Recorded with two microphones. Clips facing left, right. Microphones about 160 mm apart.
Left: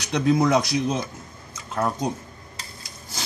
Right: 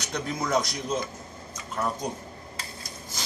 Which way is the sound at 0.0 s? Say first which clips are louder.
Left 11 dB; 75° left (ahead or behind).